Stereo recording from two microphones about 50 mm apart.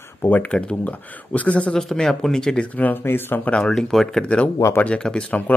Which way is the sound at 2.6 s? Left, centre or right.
Left.